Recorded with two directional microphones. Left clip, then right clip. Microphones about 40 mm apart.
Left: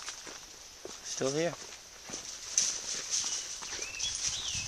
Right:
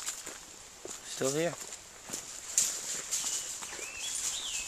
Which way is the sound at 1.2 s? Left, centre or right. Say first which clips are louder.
Right 1 dB; left.